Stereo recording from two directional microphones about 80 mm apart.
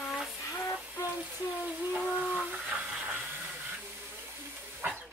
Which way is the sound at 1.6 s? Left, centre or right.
Centre.